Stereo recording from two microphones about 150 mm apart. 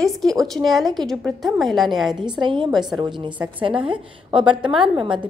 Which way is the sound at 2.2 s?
30° right (ahead or behind).